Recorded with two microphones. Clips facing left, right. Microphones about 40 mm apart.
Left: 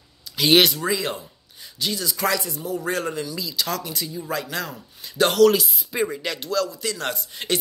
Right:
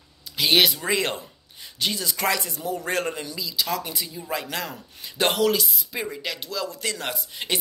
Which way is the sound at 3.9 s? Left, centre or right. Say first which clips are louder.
Left 2 dB; centre.